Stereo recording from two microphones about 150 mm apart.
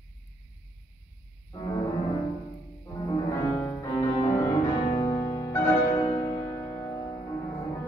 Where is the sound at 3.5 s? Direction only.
10° left (ahead or behind).